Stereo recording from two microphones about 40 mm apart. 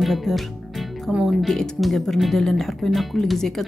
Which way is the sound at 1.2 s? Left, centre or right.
Centre.